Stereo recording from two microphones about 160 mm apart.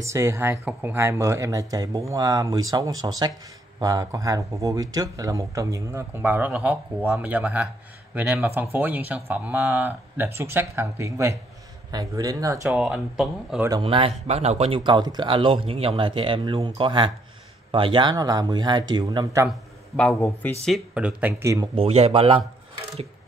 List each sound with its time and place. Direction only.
0.0 s speech: 15° right (ahead or behind)
12.7 s speech: 5° right (ahead or behind)
13.7 s speech: 30° right (ahead or behind)
14.8 s speech: 25° right (ahead or behind)
20.0 s a man's voice: 10° left (ahead or behind)
20.6 s speech: 5° right (ahead or behind)
21.7 s speech: 40° right (ahead or behind)